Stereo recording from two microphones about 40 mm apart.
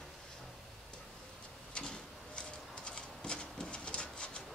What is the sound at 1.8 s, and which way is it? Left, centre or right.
Printer, left.